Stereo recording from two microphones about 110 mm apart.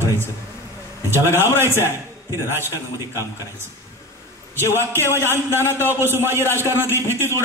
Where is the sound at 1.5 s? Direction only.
20° right (ahead or behind).